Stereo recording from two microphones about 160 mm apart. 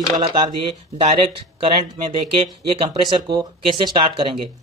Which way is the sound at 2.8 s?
30° right (ahead or behind).